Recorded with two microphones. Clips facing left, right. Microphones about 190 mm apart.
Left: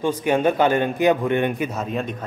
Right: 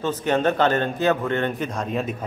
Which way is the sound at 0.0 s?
10° left (ahead or behind).